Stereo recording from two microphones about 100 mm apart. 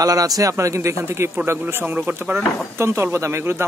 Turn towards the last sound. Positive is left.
turn(degrees=-25)  # may be behind; listen again after turning